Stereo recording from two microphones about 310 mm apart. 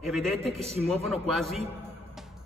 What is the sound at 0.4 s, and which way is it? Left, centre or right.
Speech, centre.